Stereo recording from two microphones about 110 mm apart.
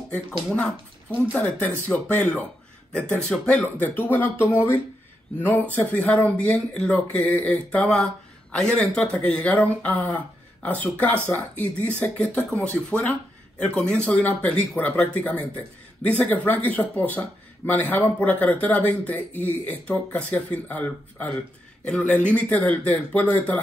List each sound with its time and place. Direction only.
0.1 s speech: 10° left (ahead or behind)